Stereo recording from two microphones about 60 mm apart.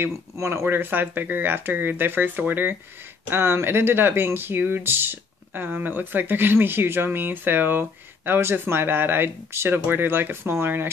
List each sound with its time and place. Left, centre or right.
0.0 s speech: right
0.7 s speech: right
3.3 s speech: right